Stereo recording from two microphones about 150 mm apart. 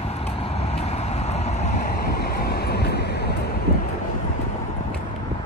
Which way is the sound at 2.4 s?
90° left.